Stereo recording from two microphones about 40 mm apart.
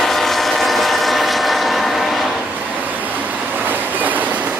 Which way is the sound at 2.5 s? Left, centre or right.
Right.